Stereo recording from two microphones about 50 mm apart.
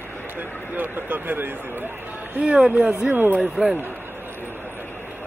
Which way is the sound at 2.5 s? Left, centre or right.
Centre.